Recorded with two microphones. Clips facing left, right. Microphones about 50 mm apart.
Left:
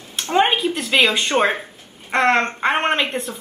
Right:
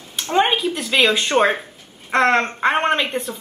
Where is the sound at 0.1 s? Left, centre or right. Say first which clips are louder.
Even; centre.